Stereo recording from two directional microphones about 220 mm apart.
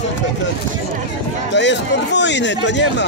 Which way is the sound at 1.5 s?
55° left (ahead or behind).